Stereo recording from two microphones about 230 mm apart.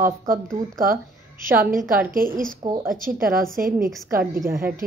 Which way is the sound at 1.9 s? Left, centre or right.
Right.